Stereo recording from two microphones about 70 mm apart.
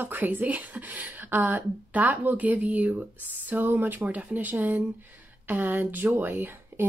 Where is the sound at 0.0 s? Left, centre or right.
Right.